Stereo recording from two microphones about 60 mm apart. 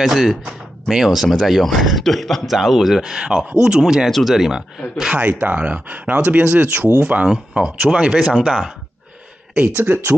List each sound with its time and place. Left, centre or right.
0.0 s speech: centre
5.1 s speech: right
7.2 s speech: centre
9.8 s speech: right